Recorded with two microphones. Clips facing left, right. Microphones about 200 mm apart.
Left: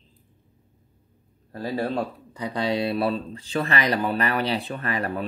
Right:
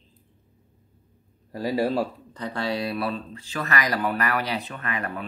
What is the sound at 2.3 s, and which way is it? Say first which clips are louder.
Speech: left 3 dB; 15° left (ahead or behind).